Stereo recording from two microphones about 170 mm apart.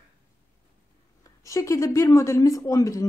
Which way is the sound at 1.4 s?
20° left (ahead or behind).